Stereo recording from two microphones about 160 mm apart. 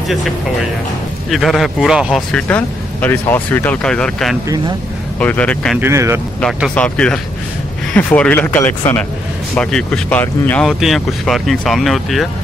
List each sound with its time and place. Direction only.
1.3 s speech: centre (ahead or behind)
2.3 s speech: 10° left (ahead or behind)
5.8 s speech: 15° right (ahead or behind)
6.7 s speech: 5° left (ahead or behind)
10.7 s speech: centre (ahead or behind)